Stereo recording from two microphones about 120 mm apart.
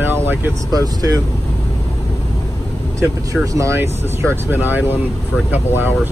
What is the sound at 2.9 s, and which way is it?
Speech, 25° right (ahead or behind).